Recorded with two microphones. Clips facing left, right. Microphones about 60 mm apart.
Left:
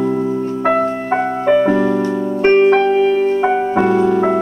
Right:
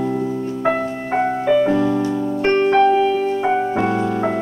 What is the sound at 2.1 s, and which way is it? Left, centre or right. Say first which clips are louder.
Piano: left 5 dB; left.